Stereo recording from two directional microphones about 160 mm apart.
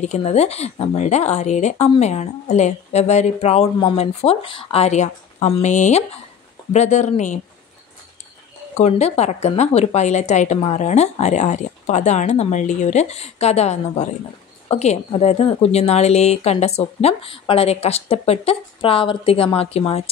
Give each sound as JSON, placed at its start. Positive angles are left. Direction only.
{"t": 0.0, "sound": "a woman's voice", "side_deg": 45}
{"t": 8.7, "sound": "a woman's voice", "side_deg": 45}